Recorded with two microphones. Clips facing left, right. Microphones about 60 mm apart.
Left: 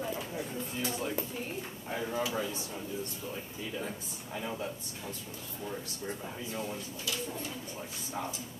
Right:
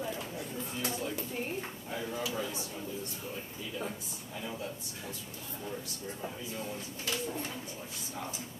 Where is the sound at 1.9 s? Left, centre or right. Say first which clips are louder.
Left 3 dB; left.